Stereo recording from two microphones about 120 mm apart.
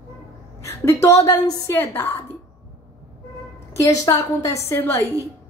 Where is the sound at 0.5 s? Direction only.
25° left (ahead or behind).